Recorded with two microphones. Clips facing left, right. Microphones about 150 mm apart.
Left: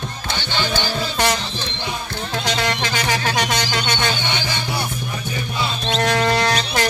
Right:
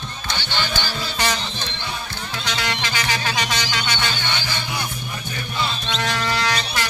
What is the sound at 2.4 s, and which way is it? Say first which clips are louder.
Music: left 4 dB; 45° left (ahead or behind).